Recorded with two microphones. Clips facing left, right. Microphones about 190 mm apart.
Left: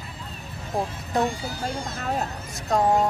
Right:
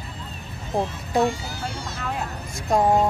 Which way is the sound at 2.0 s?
40° left (ahead or behind).